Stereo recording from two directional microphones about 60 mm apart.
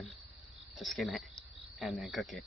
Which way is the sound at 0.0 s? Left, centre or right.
Centre.